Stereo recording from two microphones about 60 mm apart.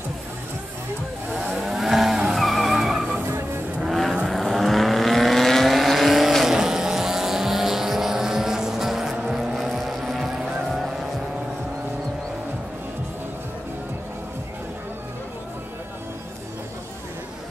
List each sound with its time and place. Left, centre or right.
1.3 s vehicle: centre
1.7 s vehicle: centre
3.2 s vehicle: right
3.8 s vehicle: centre